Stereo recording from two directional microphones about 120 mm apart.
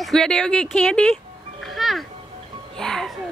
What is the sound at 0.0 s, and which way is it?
Speech, 5° left (ahead or behind).